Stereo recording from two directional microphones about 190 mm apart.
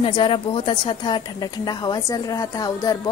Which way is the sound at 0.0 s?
25° left (ahead or behind).